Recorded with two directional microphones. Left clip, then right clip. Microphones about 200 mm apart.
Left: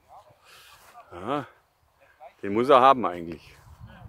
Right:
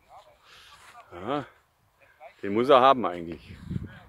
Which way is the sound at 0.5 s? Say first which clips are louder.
Even; centre (ahead or behind).